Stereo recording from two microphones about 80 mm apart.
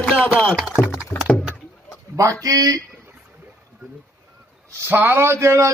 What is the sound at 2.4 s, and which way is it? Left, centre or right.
Speech, right.